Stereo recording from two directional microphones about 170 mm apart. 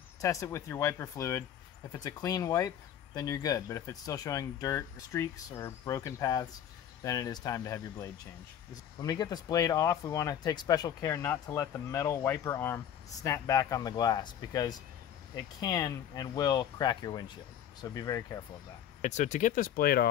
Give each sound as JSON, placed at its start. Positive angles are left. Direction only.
{"t": 0.2, "sound": "speech", "side_deg": 20}
{"t": 18.9, "sound": "speech", "side_deg": 45}